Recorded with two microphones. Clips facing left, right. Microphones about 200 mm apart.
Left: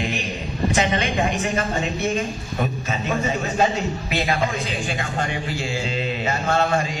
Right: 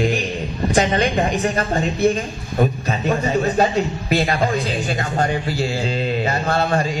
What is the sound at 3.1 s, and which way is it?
A man's voice, 40° right (ahead or behind).